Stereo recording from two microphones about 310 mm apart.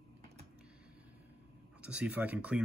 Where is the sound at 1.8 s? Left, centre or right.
Centre.